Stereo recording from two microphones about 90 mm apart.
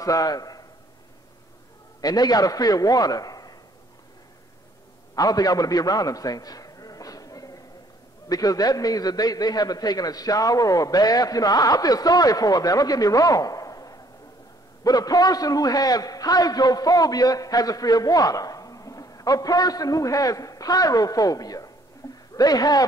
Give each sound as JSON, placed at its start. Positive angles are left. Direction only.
{"t": 0.0, "sound": "a man's voice", "side_deg": 40}
{"t": 2.0, "sound": "a man's voice", "side_deg": 45}
{"t": 5.1, "sound": "a sound", "side_deg": 45}
{"t": 8.3, "sound": "a man's voice", "side_deg": 45}